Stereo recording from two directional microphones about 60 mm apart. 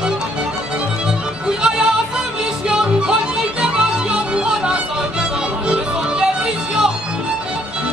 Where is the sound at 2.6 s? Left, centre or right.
Centre.